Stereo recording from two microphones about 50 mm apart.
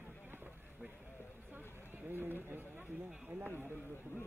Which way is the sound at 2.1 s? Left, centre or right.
Right.